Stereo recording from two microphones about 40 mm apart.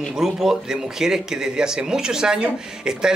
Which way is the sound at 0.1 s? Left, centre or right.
Centre.